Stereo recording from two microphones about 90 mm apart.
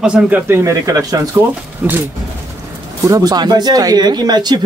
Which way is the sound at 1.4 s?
25° right (ahead or behind).